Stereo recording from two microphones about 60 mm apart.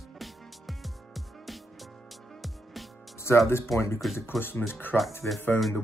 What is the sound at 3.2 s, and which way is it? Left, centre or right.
Speech, left.